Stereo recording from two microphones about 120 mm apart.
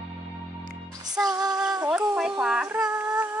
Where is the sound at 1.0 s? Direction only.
35° right (ahead or behind).